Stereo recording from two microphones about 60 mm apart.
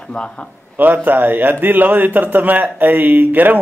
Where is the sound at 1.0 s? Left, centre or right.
Right.